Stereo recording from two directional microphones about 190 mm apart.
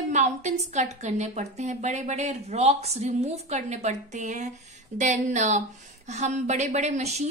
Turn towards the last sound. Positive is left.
turn(degrees=-35)  # may be behind; listen again after turning